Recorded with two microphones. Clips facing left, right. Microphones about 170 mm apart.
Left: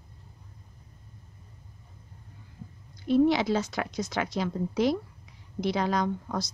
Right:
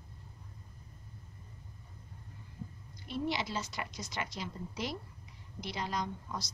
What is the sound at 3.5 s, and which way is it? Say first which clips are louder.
Speech: left 11 dB; 90° left.